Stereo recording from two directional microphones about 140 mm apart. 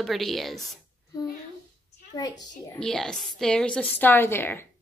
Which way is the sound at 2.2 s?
25° left (ahead or behind).